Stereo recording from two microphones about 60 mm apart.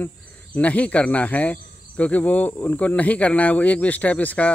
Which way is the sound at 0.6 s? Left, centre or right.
Left.